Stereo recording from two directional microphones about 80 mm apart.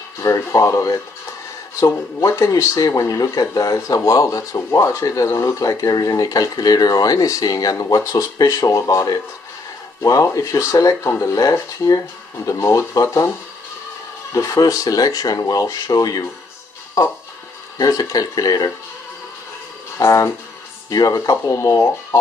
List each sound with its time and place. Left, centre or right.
0.2 s speech: left
7.7 s speech: left
14.3 s speech: left
17.7 s speech: left
20.0 s speech: left